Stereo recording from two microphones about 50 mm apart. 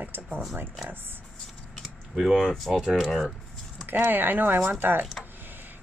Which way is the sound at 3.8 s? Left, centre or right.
Right.